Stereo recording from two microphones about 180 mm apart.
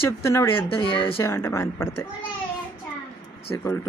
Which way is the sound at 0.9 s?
30° left (ahead or behind).